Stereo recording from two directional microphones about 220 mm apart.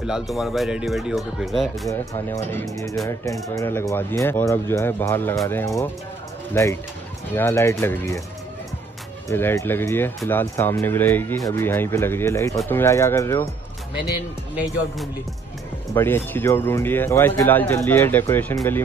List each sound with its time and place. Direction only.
0.0 s speech: centre (ahead or behind)
1.9 s speech: 10° left (ahead or behind)
9.3 s speech: 10° left (ahead or behind)
15.9 s speech: 10° left (ahead or behind)